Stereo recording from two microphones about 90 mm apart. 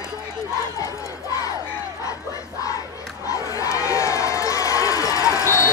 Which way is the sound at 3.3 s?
40° left (ahead or behind).